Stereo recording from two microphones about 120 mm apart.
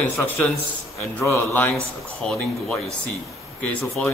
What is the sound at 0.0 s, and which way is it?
A man's voice, 15° left (ahead or behind).